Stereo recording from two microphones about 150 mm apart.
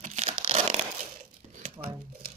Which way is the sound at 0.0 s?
50° right (ahead or behind).